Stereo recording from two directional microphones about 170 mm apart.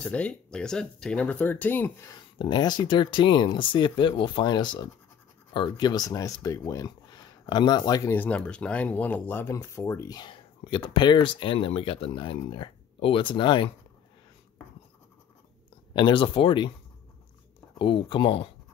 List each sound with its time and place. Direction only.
0.0 s speech: 5° left (ahead or behind)
2.3 s speech: 25° left (ahead or behind)
8.1 s speech: 10° left (ahead or behind); by 13.7 s 30° left (ahead or behind)
15.9 s speech: 30° left (ahead or behind)
17.7 s speech: 30° left (ahead or behind)